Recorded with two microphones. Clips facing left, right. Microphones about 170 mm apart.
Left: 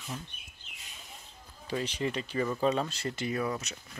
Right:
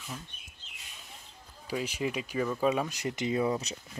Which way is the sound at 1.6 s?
10° right (ahead or behind).